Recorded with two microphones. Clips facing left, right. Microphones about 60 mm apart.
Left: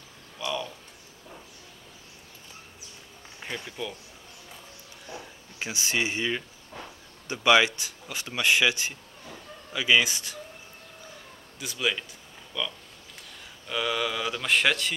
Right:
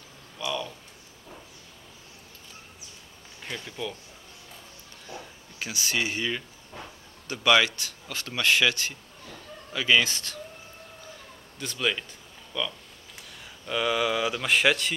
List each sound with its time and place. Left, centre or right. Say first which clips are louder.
0.5 s a sound: even; centre
3.3 s speech: left 1 dB; centre
5.6 s speech: left 1 dB; left
11.6 s speech: right 1 dB; centre